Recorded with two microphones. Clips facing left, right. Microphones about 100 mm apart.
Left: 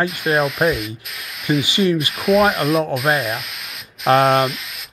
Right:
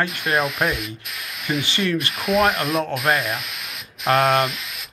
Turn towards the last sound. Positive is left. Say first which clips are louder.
# left 3 dB
turn(degrees=0)  # may be behind; listen again after turning